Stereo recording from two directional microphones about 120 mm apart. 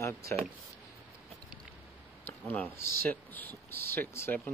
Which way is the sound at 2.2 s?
15° left (ahead or behind).